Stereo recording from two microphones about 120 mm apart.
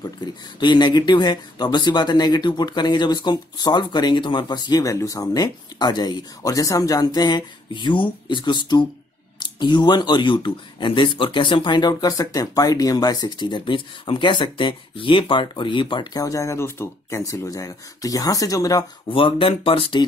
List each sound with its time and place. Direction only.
0.0 s speech: 40° left (ahead or behind)
19.0 s speech: 45° left (ahead or behind)